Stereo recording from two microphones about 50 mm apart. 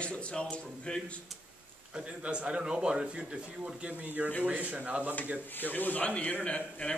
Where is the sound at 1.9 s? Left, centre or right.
Right.